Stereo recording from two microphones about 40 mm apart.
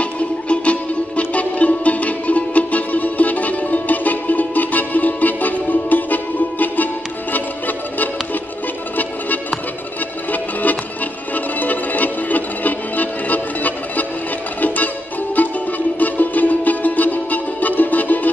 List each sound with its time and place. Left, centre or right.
0.0 s music: left
10.3 s music: left
15.4 s music: left